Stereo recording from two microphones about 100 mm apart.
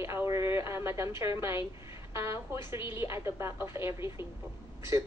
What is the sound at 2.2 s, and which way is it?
Speech, 30° right (ahead or behind).